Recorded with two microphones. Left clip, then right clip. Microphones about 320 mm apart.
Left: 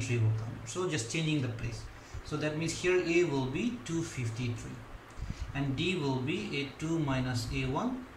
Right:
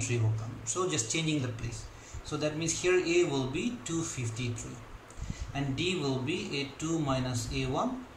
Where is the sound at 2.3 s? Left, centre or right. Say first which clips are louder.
Right 2 dB; centre.